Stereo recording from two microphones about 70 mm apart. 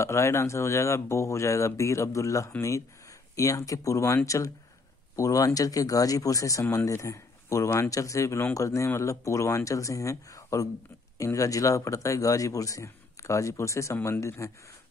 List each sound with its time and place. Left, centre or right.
0.0 s speech: left
7.9 s speech: left